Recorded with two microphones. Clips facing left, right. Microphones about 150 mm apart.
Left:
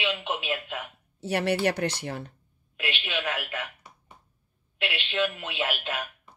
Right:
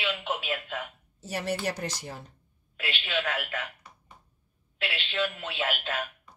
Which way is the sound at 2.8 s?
10° left (ahead or behind).